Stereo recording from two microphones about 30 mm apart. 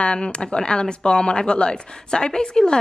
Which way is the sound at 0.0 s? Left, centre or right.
Left.